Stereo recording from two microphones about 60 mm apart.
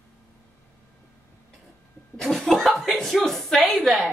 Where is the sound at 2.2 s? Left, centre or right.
Centre.